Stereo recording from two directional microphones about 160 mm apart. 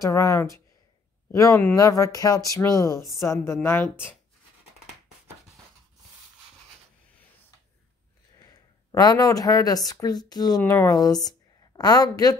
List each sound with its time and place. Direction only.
0.0 s speech: 20° left (ahead or behind)
8.4 s a woman's voice: 25° left (ahead or behind)